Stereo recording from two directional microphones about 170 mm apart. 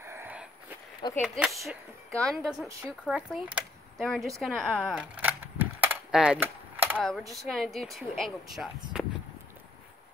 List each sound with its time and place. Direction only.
0.0 s wheeze: 15° right (ahead or behind)
1.0 s speech: 25° left (ahead or behind)
1.4 s speech: centre (ahead or behind)
4.9 s a sound: 10° right (ahead or behind)
7.0 s speech: centre (ahead or behind)